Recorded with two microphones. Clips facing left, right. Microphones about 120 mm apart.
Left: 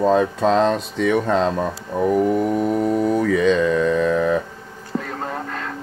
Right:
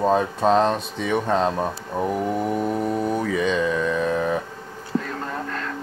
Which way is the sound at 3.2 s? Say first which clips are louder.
Left 5 dB; 60° left (ahead or behind).